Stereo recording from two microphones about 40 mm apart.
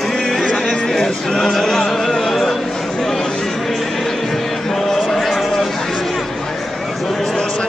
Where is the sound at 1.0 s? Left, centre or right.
Centre.